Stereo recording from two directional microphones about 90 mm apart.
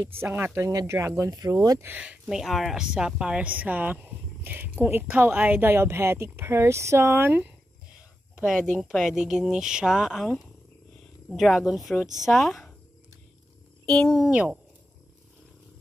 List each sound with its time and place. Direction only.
0.2 s speech: 25° right (ahead or behind); by 1.8 s 45° right (ahead or behind)
1.8 s speech: 20° right (ahead or behind)
2.2 s speech: 5° right (ahead or behind); by 7.4 s 25° right (ahead or behind)
8.7 s speech: centre (ahead or behind)
13.8 s speech: 5° left (ahead or behind)
14.3 s speech: 10° right (ahead or behind)